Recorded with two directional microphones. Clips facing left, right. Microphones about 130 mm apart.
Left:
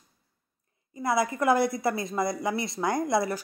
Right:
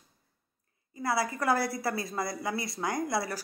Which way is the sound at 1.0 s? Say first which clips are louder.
Left 4 dB; 20° left (ahead or behind).